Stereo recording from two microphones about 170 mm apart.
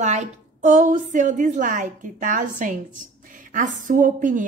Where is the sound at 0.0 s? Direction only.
45° right (ahead or behind).